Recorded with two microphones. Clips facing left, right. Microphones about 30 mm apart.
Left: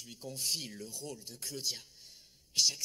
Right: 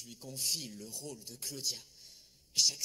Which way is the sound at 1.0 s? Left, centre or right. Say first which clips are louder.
Left 1 dB; centre.